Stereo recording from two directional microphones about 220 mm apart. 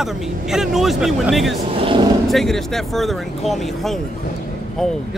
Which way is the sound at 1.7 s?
25° right (ahead or behind).